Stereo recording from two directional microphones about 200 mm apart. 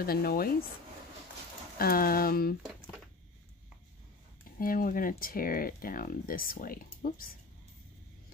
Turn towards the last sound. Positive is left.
turn(degrees=45)  # may be behind; listen again after turning